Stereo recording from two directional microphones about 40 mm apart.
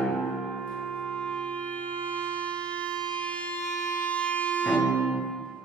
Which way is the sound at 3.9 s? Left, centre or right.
Left.